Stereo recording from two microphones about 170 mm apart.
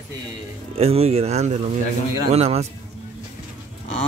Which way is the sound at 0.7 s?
35° right (ahead or behind).